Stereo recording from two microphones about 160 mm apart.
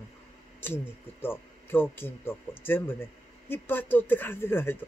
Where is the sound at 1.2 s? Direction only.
15° left (ahead or behind).